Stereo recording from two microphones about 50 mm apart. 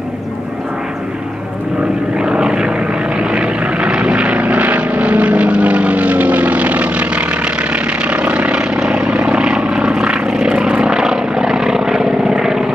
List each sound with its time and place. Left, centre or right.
2.1 s vehicle: centre